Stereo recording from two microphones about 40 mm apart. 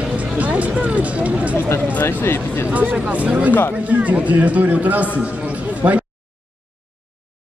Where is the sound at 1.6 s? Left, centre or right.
Left.